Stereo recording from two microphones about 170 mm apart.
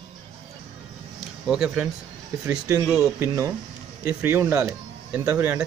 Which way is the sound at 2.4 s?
10° right (ahead or behind).